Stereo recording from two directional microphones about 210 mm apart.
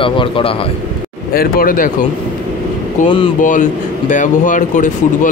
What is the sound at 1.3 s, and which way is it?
Speech, 45° left (ahead or behind).